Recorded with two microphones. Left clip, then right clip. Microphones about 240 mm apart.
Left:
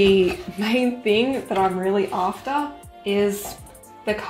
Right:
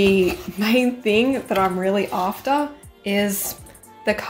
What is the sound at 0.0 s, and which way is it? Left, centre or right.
A woman's voice, centre.